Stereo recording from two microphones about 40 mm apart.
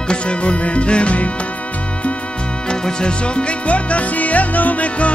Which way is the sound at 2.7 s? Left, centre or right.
Left.